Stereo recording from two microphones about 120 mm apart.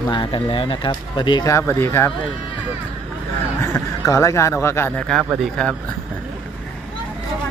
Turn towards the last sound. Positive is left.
turn(degrees=5)  # may be behind; listen again after turning